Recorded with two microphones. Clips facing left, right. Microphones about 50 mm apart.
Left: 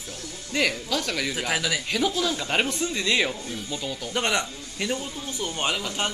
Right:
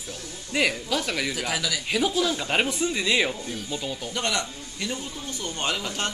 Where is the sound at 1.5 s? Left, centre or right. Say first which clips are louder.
Left 2 dB; left.